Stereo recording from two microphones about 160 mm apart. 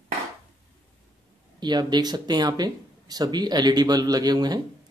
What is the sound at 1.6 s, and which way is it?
Speech, 25° right (ahead or behind).